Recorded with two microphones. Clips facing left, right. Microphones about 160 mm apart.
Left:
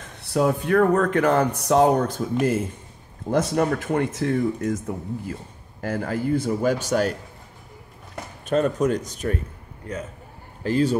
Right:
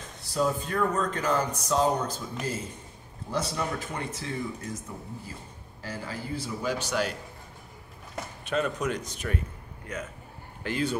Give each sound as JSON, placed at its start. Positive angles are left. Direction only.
{"t": 0.2, "sound": "speech", "side_deg": 60}
{"t": 8.5, "sound": "speech", "side_deg": 45}
{"t": 10.6, "sound": "speech", "side_deg": 35}